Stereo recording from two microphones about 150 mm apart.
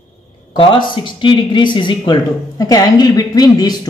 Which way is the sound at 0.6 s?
35° left (ahead or behind).